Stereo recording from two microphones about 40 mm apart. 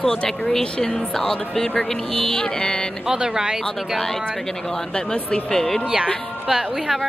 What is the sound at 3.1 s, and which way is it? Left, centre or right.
Speech, centre.